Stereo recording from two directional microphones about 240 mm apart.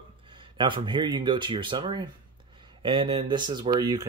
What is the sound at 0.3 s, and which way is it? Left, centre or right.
Speech, centre.